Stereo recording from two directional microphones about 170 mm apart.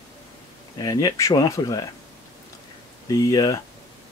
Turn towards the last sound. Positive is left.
turn(degrees=20)  # may be behind; listen again after turning